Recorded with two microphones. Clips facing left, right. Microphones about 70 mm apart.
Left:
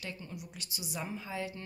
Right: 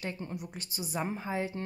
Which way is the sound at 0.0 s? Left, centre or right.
Right.